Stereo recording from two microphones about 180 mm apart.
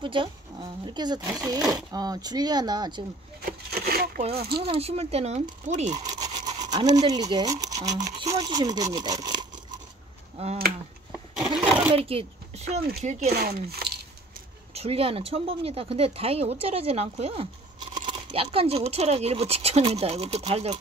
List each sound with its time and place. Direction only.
0.0 s speech: 30° right (ahead or behind)
3.4 s a sound: 55° right (ahead or behind)
4.2 s speech: 35° right (ahead or behind)
6.7 s speech: 20° right (ahead or behind)
8.9 s a sound: 20° right (ahead or behind)
10.3 s a sound: 35° right (ahead or behind)
11.1 s sewing machine: centre (ahead or behind)
11.9 s speech: 30° right (ahead or behind)
13.3 s speech: 55° right (ahead or behind)
14.7 s speech: 35° right (ahead or behind)